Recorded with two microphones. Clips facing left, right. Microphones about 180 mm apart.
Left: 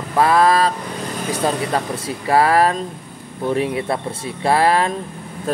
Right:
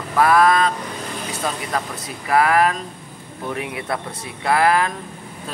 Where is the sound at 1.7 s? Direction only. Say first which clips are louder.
Left 4 dB; 30° left (ahead or behind).